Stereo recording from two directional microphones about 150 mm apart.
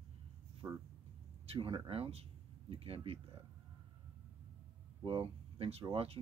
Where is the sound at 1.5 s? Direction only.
40° right (ahead or behind).